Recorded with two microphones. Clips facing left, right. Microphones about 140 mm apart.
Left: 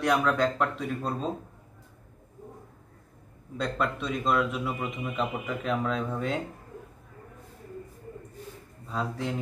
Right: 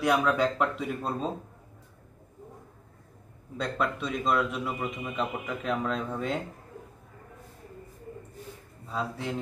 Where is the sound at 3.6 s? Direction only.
Centre (ahead or behind).